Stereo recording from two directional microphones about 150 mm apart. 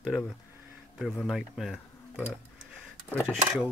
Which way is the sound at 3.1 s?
10° left (ahead or behind).